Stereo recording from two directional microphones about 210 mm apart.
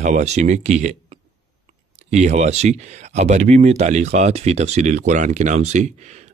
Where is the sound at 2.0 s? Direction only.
35° right (ahead or behind).